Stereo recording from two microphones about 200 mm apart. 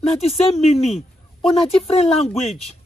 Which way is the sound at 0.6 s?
30° left (ahead or behind).